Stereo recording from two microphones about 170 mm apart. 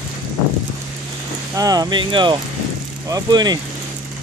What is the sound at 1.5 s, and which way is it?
Speech, 20° right (ahead or behind).